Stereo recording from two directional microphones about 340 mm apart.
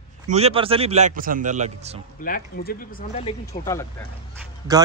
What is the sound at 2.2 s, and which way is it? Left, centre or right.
Speech, left.